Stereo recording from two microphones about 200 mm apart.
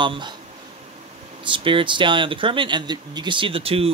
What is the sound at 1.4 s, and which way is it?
Speech, 25° right (ahead or behind).